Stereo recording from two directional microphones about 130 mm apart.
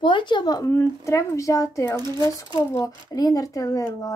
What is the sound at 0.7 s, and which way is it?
Speech, 20° left (ahead or behind).